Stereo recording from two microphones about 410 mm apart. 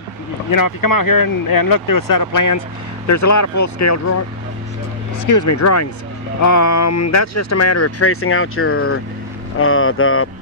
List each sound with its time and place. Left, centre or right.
0.5 s speech: left
5.2 s speech: left